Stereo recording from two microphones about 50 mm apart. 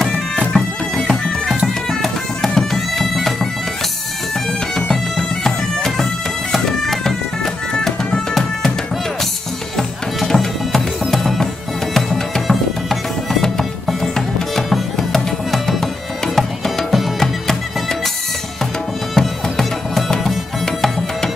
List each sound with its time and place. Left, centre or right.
0.4 s bagpipes: centre
1.1 s bagpipes: centre
4.7 s bagpipes: centre
9.8 s music: centre
19.1 s music: centre